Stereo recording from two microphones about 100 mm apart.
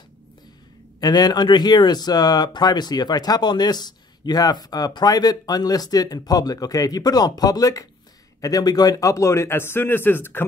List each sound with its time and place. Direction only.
1.0 s a man's voice: 45° left (ahead or behind); by 10.4 s 20° left (ahead or behind)